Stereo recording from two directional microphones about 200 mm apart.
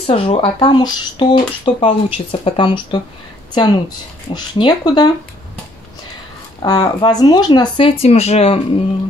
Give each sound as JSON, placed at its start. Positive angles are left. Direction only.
{"t": 0.0, "sound": "speech", "side_deg": 30}
{"t": 6.6, "sound": "speech", "side_deg": 20}